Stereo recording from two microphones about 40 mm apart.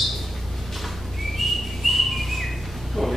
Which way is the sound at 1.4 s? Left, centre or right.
Centre.